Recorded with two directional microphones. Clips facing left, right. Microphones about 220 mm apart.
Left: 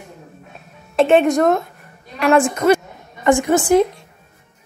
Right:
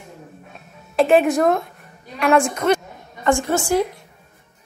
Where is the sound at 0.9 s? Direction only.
Centre (ahead or behind).